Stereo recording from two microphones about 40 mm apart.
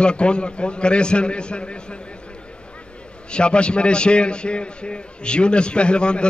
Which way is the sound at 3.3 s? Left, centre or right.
Left.